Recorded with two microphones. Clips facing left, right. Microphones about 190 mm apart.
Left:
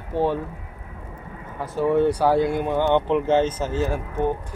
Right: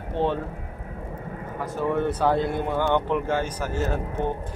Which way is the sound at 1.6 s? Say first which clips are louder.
Left 5 dB; 15° left (ahead or behind).